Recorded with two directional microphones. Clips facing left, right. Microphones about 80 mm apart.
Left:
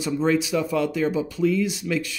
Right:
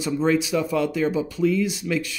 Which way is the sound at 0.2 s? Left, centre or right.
Right.